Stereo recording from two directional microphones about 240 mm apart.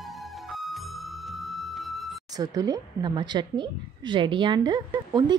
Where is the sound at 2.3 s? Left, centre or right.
Centre.